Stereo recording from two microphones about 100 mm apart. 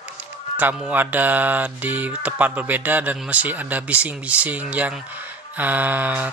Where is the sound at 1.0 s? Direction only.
20° right (ahead or behind).